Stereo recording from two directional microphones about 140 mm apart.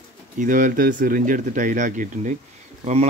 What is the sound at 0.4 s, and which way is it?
Speech, 70° right (ahead or behind).